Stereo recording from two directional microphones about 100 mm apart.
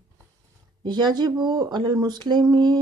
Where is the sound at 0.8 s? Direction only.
45° right (ahead or behind).